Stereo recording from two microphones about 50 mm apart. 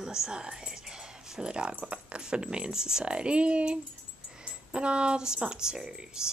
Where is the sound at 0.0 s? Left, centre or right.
Centre.